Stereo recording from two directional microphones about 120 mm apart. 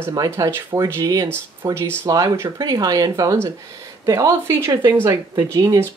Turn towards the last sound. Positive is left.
turn(degrees=-30)  # may be behind; listen again after turning